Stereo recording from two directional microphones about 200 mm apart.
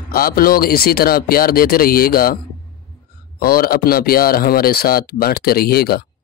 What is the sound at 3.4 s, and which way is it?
Speech, 45° left (ahead or behind).